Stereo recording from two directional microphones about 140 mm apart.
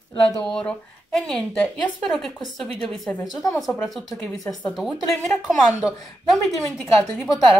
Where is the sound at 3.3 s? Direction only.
25° left (ahead or behind).